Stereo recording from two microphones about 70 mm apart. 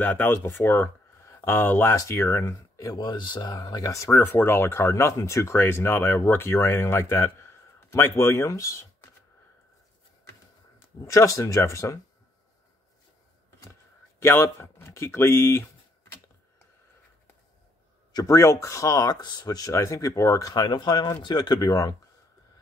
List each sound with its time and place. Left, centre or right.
0.0 s speech: left
2.0 s speech: left
3.0 s speech: left
4.1 s speech: left
11.1 s speech: left
14.2 s speech: left
18.2 s speech: left
19.7 s speech: left
20.5 s speech: left